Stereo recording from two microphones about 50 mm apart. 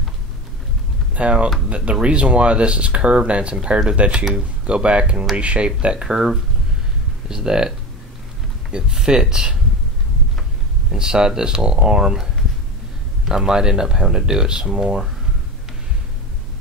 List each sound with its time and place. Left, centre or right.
1.1 s speech: right
8.7 s speech: centre
10.9 s speech: centre